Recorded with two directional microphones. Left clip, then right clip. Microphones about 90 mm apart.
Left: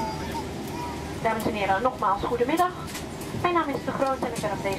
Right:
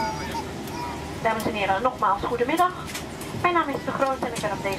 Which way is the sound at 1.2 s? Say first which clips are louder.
Right 1 dB; 5° left (ahead or behind).